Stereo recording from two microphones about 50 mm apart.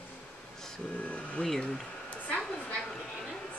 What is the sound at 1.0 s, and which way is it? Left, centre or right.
Speech, left.